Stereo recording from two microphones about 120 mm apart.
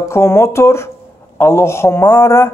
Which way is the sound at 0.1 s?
20° left (ahead or behind).